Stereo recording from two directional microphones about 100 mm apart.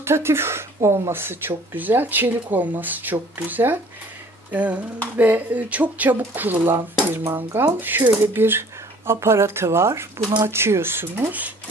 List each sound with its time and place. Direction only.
0.0 s a woman's voice: 25° right (ahead or behind)
4.5 s a sound: 15° right (ahead or behind)
5.1 s a woman's voice: 15° right (ahead or behind)